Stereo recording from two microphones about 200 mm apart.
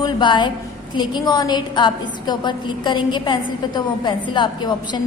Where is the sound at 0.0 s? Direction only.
20° left (ahead or behind).